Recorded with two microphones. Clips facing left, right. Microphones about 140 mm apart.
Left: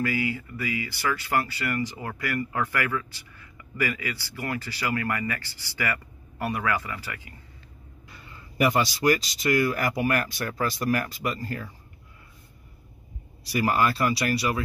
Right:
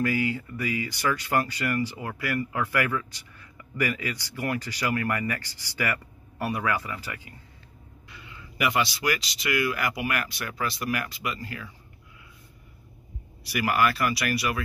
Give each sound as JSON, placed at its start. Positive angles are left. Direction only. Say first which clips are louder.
{"t": 0.0, "sound": "speech", "louder": "right 1 dB", "side_deg": -15}
{"t": 4.1, "sound": "speech", "louder": "right 2 dB", "side_deg": -15}
{"t": 8.1, "sound": "speech", "louder": "right 1 dB", "side_deg": 40}
{"t": 13.4, "sound": "speech", "louder": "left 1 dB", "side_deg": 30}